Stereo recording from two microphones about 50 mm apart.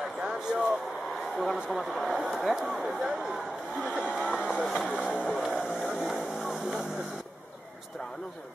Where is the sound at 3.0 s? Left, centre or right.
Centre.